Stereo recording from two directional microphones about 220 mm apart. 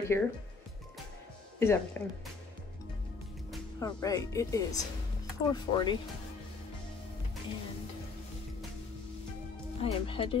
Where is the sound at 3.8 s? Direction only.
15° left (ahead or behind).